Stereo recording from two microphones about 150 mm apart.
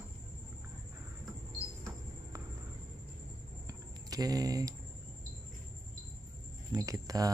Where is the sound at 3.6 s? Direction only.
25° right (ahead or behind).